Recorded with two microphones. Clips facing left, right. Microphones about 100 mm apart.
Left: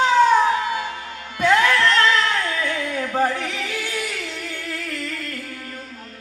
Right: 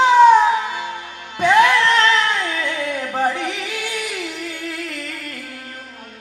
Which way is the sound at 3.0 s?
15° right (ahead or behind).